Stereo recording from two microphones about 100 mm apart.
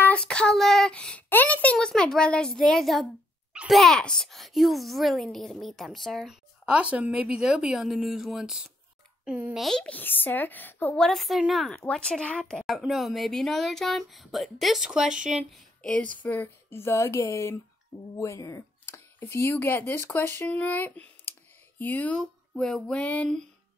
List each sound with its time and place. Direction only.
0.0 s a child's voice: 10° left (ahead or behind)
9.8 s speech: 20° left (ahead or behind)
11.0 s speech: centre (ahead or behind)
15.5 s speech: 10° left (ahead or behind)
22.2 s a sound: 5° left (ahead or behind)